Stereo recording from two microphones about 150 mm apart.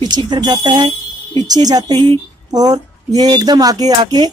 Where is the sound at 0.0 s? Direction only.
30° right (ahead or behind).